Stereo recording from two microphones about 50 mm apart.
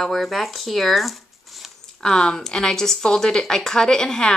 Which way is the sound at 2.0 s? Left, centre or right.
Centre.